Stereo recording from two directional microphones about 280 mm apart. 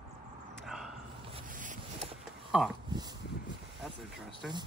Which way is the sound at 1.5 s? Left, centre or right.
Right.